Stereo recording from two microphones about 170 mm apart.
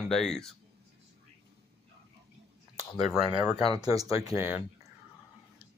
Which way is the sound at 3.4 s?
35° left (ahead or behind).